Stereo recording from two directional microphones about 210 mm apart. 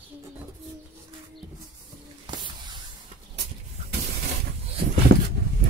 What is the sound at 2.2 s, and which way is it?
Spray, 20° right (ahead or behind).